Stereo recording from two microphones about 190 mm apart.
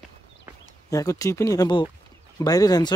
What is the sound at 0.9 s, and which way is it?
Speech, 15° left (ahead or behind).